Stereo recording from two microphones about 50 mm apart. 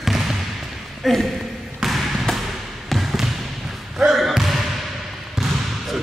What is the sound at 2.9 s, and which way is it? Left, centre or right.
Trickle, centre.